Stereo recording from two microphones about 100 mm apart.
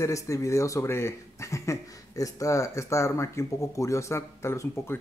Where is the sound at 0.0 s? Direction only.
30° left (ahead or behind).